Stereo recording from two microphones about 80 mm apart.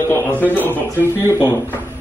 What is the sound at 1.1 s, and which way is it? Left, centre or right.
Speech, right.